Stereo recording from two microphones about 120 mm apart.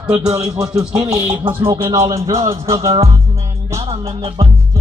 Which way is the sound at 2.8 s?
55° right (ahead or behind).